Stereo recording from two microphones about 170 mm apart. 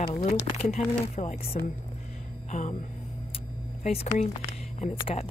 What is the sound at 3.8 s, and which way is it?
Speech, 40° left (ahead or behind).